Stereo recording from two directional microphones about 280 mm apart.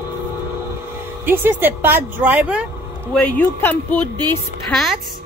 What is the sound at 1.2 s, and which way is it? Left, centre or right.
A woman's voice, centre.